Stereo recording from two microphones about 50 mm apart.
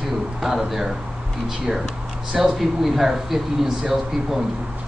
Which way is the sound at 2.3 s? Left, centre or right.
Centre.